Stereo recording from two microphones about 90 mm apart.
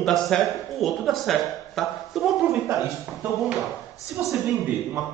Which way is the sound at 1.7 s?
Centre (ahead or behind).